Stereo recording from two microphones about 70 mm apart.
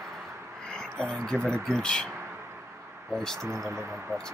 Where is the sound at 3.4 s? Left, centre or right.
Right.